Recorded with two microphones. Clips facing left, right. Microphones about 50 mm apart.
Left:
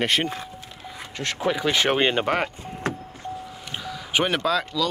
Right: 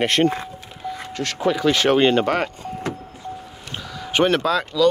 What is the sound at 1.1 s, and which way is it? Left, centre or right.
Speech, centre.